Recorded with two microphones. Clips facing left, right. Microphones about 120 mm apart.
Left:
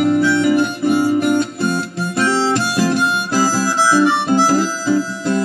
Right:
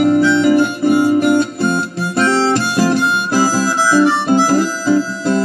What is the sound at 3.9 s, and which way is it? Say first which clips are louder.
Harmonica: right 3 dB; 50° right (ahead or behind).